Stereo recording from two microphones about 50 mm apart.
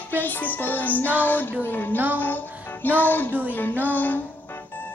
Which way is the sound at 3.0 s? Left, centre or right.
Left.